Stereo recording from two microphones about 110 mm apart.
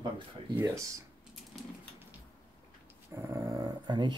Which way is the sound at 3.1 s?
25° right (ahead or behind).